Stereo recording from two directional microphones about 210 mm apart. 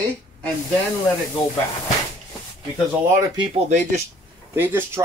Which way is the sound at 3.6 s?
35° right (ahead or behind).